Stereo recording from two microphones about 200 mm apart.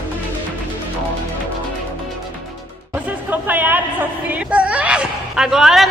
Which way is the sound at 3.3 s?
10° right (ahead or behind).